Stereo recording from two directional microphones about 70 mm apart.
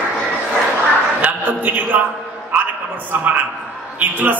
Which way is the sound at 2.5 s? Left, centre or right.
Right.